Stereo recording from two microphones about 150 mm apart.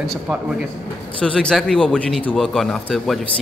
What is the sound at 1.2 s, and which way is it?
A man's voice, 5° left (ahead or behind).